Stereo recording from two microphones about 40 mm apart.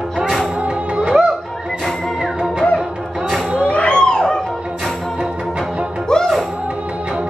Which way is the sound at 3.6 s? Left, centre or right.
Left.